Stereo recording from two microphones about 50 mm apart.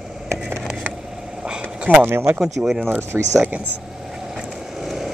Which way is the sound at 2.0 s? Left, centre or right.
Right.